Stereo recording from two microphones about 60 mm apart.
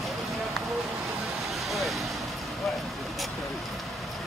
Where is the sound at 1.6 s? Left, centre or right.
Centre.